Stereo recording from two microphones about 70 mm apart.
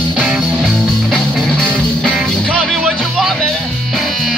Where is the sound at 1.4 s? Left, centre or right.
Centre.